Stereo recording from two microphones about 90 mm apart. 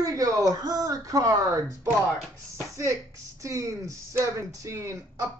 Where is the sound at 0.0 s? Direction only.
40° right (ahead or behind).